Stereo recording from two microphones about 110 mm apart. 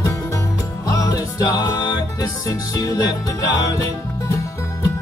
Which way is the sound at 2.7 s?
35° left (ahead or behind).